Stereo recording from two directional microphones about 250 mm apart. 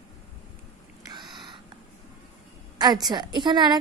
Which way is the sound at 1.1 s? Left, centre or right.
Centre.